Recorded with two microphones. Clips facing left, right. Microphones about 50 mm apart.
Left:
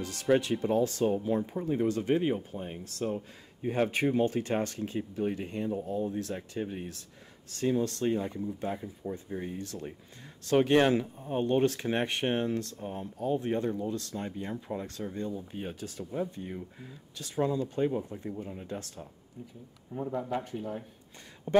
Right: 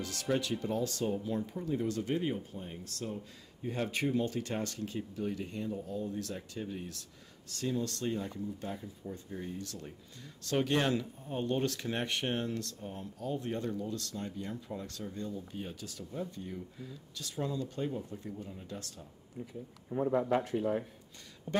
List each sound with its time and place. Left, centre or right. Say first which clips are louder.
0.0 s speech: left 7 dB; left
20.1 s speech: right 4 dB; right
20.5 s speech: right 5 dB; centre
21.5 s speech: left 9 dB; left